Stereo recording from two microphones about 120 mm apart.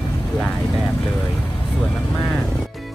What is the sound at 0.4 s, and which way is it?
Speech, 5° left (ahead or behind).